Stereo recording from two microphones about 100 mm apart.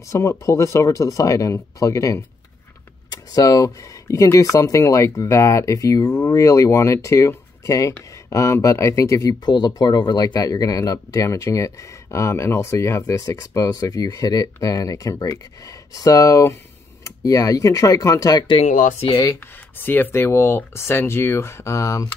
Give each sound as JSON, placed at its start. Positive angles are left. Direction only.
{"t": 0.1, "sound": "speech", "side_deg": 30}
{"t": 18.6, "sound": "speech", "side_deg": 90}
{"t": 19.8, "sound": "speech", "side_deg": 20}